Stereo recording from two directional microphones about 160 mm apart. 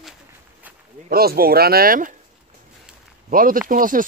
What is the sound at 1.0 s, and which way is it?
Speech, 70° right (ahead or behind).